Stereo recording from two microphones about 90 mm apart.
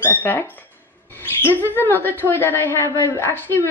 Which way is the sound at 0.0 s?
20° left (ahead or behind).